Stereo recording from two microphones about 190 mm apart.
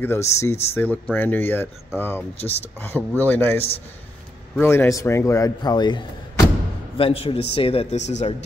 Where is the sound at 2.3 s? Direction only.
30° left (ahead or behind).